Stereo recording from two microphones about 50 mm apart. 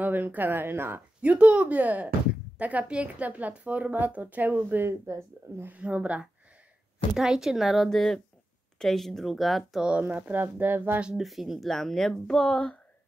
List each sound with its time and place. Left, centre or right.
0.0 s a woman's voice: right
1.2 s a woman's voice: right
5.7 s speech: right
7.2 s speech: centre
7.9 s speech: centre
9.8 s speech: right
10.0 s a woman's voice: right
11.1 s speech: centre